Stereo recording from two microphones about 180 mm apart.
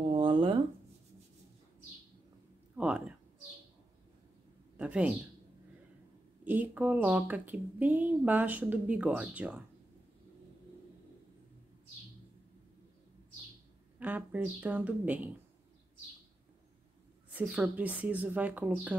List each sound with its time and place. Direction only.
0.1 s a sound: 30° right (ahead or behind)
2.8 s cat: 5° right (ahead or behind)
4.7 s a sound: 5° right (ahead or behind)
6.4 s speech: 10° right (ahead or behind)
13.9 s speech: 10° right (ahead or behind)
17.3 s speech: 10° right (ahead or behind)